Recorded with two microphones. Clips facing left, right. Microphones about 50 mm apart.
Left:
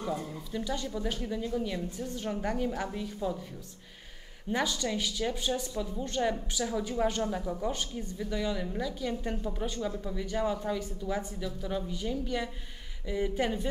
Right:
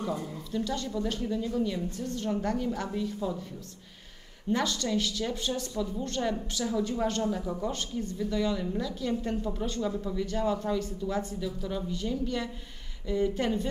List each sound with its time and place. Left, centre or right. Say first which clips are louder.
0.5 s speech: right 3 dB; centre
4.5 s speech: right 2 dB; centre